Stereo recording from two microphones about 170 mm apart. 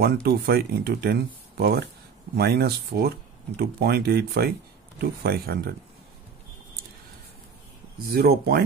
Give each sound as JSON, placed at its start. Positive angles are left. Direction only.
{"t": 0.0, "sound": "speech", "side_deg": -65}
{"t": 8.1, "sound": "speech", "side_deg": -65}